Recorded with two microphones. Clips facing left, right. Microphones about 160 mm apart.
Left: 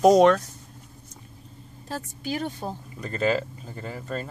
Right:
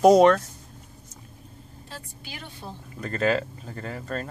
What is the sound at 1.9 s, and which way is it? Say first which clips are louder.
Speech: left 12 dB; 45° left (ahead or behind).